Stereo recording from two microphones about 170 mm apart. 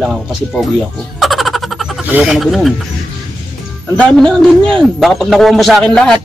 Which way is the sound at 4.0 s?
5° left (ahead or behind).